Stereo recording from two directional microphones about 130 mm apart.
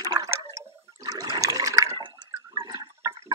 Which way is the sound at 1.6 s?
25° right (ahead or behind).